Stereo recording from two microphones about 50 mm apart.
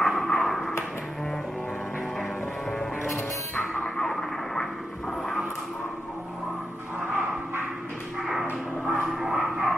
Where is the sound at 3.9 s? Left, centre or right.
Centre.